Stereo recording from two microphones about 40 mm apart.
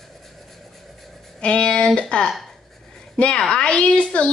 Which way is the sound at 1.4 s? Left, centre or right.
Left.